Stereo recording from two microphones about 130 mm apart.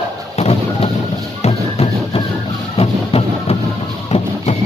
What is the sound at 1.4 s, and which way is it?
Music, 50° left (ahead or behind).